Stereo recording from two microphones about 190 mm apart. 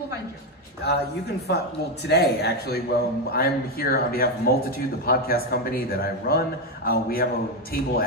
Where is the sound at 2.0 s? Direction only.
60° left (ahead or behind).